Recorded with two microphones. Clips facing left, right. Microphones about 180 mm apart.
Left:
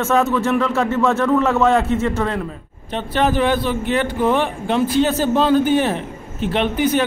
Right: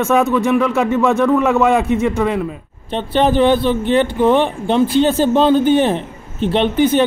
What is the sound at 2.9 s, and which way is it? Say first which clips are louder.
Speech: right 4 dB; 30° right (ahead or behind).